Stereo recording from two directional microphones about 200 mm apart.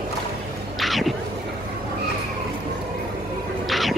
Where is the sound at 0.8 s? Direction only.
Centre (ahead or behind).